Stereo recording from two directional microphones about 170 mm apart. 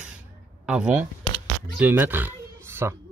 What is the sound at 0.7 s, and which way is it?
Speech, 5° right (ahead or behind).